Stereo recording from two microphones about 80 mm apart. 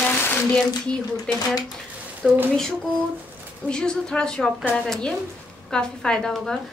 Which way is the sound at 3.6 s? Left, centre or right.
Centre.